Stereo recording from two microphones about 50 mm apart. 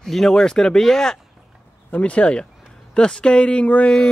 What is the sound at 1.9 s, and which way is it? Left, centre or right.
Speech, left.